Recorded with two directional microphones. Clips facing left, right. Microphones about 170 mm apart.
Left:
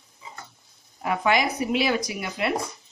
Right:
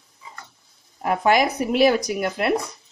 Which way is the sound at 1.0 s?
45° right (ahead or behind).